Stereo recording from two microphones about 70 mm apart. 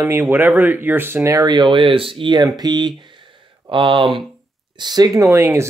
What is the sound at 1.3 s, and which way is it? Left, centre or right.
Speech, right.